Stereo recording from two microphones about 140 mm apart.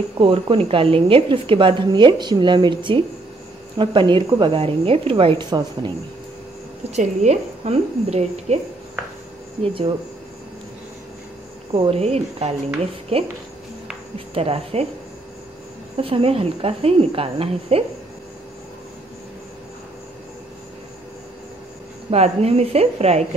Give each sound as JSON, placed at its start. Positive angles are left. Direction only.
{"t": 0.2, "sound": "a woman's voice", "side_deg": -40}
{"t": 6.9, "sound": "speech", "side_deg": -55}
{"t": 11.7, "sound": "speech", "side_deg": -45}
{"t": 14.3, "sound": "speech", "side_deg": -45}
{"t": 16.0, "sound": "speech", "side_deg": -40}
{"t": 22.1, "sound": "speech", "side_deg": -50}